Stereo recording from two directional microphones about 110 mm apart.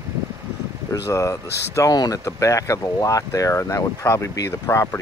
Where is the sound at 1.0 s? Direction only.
30° left (ahead or behind).